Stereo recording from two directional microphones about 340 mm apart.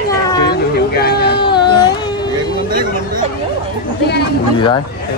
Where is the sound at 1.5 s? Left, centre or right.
Centre.